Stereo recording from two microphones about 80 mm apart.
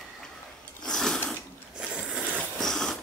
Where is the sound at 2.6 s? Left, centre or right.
Centre.